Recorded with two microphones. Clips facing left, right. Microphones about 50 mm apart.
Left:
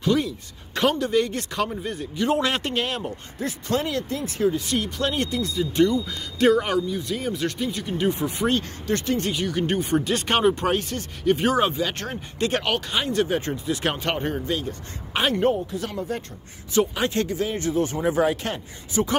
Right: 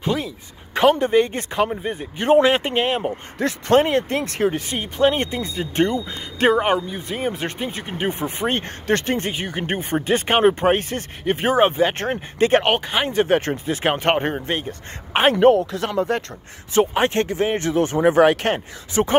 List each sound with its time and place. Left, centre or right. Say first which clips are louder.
0.9 s speech: right 4 dB; right
2.1 s speech: right 8 dB; right
2.4 s speech: right 6 dB; centre
3.3 s speech: right 5 dB; right
3.7 s speech: right 9 dB; right
4.2 s speech: right 2 dB; right
4.6 s speech: right 6 dB; right
5.6 s speech: even; right
13.3 s speech: right 5 dB; right
15.5 s speech: right 8 dB; right
16.7 s speech: right 4 dB; right
18.5 s speech: right 6 dB; right